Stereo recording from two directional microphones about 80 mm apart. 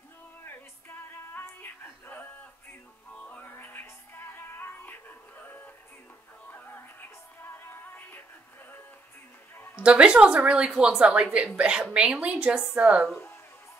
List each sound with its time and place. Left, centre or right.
0.8 s music: left
9.8 s a woman's voice: centre